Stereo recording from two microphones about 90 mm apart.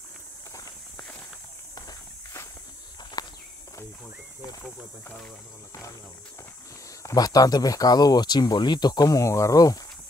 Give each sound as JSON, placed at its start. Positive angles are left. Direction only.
{"t": 3.2, "sound": "walk", "side_deg": 50}
{"t": 7.0, "sound": "speech", "side_deg": 40}